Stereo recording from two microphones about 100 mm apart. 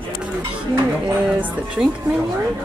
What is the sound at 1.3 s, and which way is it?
Speech, 15° right (ahead or behind).